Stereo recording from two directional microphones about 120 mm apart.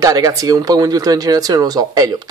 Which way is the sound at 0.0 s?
30° right (ahead or behind).